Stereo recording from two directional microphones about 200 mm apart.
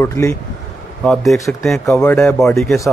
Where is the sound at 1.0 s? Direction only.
Centre (ahead or behind).